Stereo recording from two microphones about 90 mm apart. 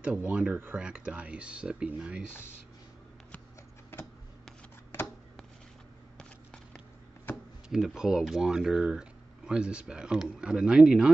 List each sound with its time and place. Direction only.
0.0 s speech: 10° right (ahead or behind)
6.1 s a sound: 10° left (ahead or behind)
7.7 s speech: 5° right (ahead or behind)